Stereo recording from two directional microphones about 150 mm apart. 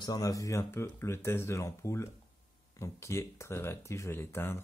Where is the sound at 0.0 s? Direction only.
25° left (ahead or behind).